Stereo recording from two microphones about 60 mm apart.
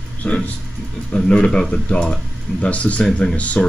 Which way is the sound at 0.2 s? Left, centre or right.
Centre.